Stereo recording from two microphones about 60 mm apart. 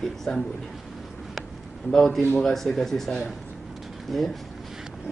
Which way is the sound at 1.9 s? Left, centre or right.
Centre.